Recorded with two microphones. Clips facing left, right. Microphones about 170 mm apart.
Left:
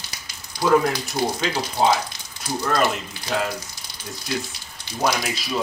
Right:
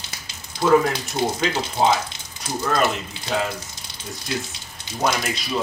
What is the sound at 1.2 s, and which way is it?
Speech, 20° right (ahead or behind).